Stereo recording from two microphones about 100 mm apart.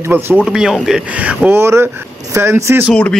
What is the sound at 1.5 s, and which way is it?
Speech, 25° right (ahead or behind).